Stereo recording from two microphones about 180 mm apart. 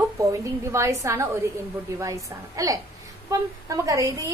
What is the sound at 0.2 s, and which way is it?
A woman's voice, 15° right (ahead or behind).